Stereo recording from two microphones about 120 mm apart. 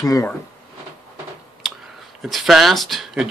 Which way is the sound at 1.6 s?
5° right (ahead or behind).